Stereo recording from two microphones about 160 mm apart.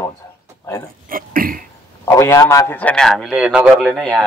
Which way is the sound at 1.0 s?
60° right (ahead or behind).